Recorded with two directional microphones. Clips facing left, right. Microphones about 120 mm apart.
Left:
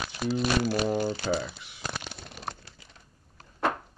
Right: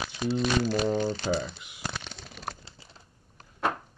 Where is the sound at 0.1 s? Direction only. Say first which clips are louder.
Even; centre (ahead or behind).